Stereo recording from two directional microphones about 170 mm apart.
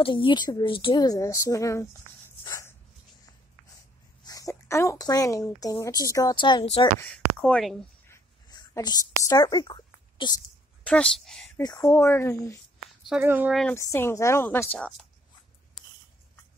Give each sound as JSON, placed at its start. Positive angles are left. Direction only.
{"t": 0.0, "sound": "speech", "side_deg": 30}
{"t": 2.4, "sound": "dog", "side_deg": 20}
{"t": 4.2, "sound": "speech", "side_deg": 20}
{"t": 7.0, "sound": "speech", "side_deg": 5}
{"t": 8.1, "sound": "a sound", "side_deg": 20}
{"t": 10.8, "sound": "a woman's voice", "side_deg": 5}
{"t": 11.5, "sound": "a woman's voice", "side_deg": 20}
{"t": 13.2, "sound": "speech", "side_deg": -10}
{"t": 13.5, "sound": "speech", "side_deg": 0}
{"t": 13.7, "sound": "a woman's voice", "side_deg": 15}